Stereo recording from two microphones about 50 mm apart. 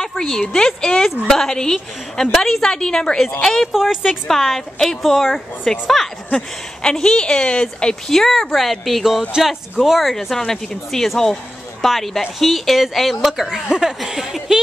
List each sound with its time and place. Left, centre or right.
0.0 s a sound: centre
0.4 s speech: centre
3.7 s speech: centre
4.1 s a woman's voice: centre
6.3 s speech: centre
7.8 s a woman's voice: centre
10.3 s a woman's voice: centre